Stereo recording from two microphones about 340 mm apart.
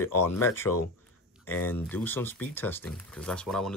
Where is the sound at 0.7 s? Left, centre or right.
Left.